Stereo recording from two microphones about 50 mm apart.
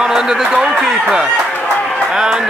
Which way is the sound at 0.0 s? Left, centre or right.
Centre.